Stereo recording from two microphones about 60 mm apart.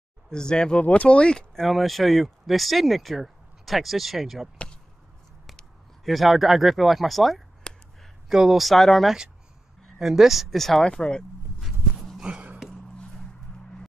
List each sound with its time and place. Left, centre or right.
0.3 s speech: centre
1.6 s speech: centre
5.6 s speech: centre
11.6 s livestock: centre
12.3 s a sound: centre